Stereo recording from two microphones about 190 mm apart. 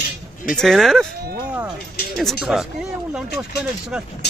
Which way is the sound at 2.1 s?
Centre (ahead or behind).